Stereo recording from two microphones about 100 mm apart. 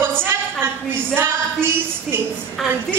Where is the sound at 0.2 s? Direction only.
20° right (ahead or behind).